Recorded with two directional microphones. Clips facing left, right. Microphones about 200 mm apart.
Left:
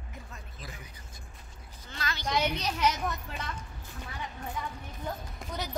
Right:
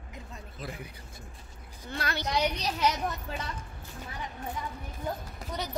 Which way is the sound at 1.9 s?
60° right (ahead or behind).